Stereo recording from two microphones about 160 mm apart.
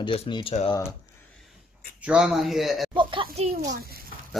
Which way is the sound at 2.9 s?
30° right (ahead or behind).